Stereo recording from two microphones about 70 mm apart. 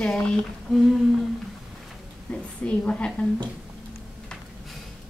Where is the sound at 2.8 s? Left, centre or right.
Centre.